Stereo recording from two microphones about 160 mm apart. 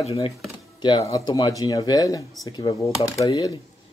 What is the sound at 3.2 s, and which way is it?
Speech, 25° left (ahead or behind).